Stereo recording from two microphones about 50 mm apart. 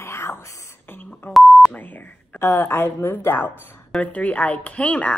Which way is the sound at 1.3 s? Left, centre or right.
Centre.